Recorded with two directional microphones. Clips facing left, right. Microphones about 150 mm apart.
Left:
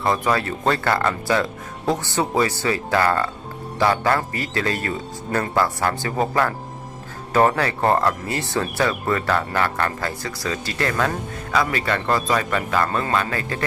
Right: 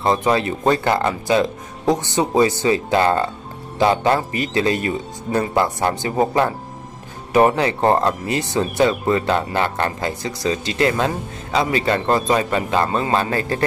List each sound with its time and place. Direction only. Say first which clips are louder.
0.0 s speech: right 3 dB; 20° right (ahead or behind)